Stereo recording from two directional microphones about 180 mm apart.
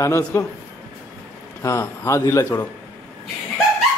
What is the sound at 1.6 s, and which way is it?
A man's voice, 15° left (ahead or behind).